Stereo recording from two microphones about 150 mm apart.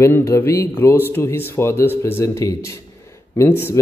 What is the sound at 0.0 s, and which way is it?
A man's voice, 15° left (ahead or behind).